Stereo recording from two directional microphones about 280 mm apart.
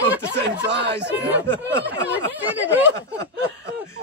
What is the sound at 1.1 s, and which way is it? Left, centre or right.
Snicker, centre.